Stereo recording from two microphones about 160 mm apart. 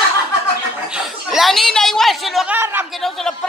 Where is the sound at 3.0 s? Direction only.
Centre (ahead or behind).